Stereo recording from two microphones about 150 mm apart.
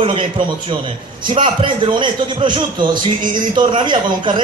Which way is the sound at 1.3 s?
35° right (ahead or behind).